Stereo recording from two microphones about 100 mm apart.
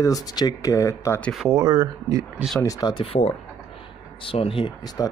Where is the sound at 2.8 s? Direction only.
60° left (ahead or behind).